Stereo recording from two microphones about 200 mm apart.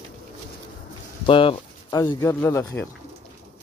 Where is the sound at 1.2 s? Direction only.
25° left (ahead or behind).